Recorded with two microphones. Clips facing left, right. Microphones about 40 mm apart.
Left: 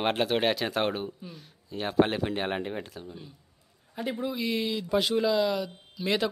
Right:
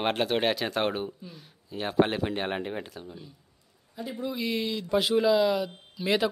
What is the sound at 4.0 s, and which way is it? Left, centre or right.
Speech, left.